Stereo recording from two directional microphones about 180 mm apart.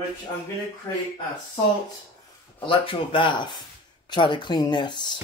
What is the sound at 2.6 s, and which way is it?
Speech, 30° left (ahead or behind).